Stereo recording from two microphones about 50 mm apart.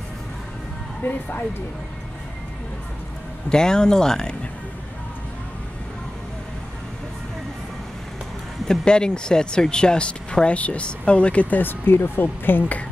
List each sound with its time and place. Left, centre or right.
1.0 s speech: left
3.4 s speech: centre
8.6 s speech: centre
11.5 s speech: left